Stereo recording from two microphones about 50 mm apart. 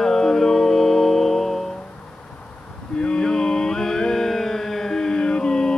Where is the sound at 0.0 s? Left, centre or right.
Centre.